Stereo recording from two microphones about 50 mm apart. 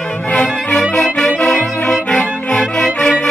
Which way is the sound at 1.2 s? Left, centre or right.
Left.